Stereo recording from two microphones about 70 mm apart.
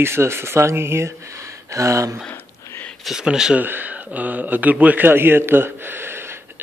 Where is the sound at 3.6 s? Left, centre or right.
Right.